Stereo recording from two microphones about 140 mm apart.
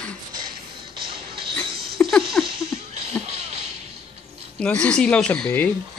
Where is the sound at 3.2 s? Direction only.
50° right (ahead or behind).